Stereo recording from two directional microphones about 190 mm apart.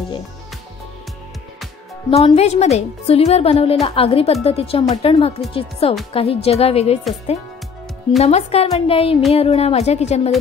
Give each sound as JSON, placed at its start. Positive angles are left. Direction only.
{"t": 2.0, "sound": "a woman's voice", "side_deg": 30}
{"t": 8.2, "sound": "a woman's voice", "side_deg": 35}